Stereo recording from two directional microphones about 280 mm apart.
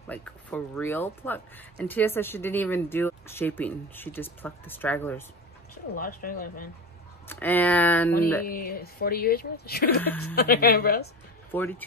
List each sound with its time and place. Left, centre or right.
0.0 s speech: centre
5.9 s speech: left
7.2 s speech: centre
8.5 s speech: left
11.5 s speech: centre